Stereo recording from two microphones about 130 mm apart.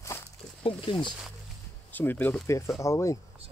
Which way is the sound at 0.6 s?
40° left (ahead or behind).